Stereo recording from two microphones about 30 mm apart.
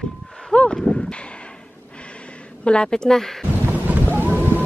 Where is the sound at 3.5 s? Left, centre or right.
Right.